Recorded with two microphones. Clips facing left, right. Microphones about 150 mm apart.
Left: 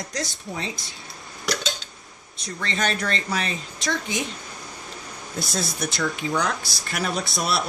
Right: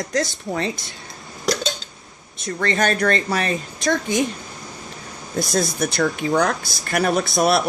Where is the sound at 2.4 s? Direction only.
50° right (ahead or behind).